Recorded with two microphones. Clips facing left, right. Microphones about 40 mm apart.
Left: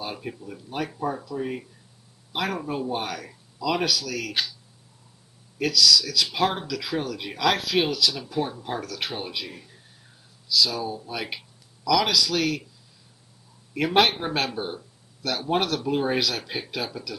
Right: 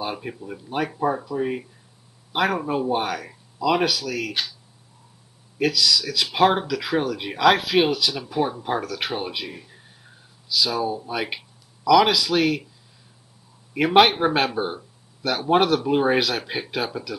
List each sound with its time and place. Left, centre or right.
0.0 s speech: centre
4.3 s speech: centre
5.6 s speech: right
13.7 s speech: centre